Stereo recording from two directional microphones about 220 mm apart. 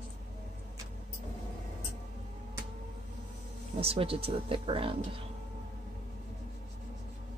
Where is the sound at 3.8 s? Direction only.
25° right (ahead or behind).